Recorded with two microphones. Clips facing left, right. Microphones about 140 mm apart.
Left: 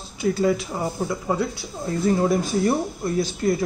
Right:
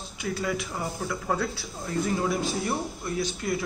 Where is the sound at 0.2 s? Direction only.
30° left (ahead or behind).